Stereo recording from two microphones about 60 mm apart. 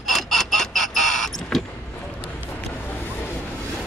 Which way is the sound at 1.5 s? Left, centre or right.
Centre.